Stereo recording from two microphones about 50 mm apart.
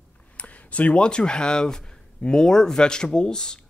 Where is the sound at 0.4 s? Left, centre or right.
Left.